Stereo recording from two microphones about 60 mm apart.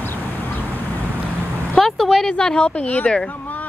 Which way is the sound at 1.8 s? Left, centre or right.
Centre.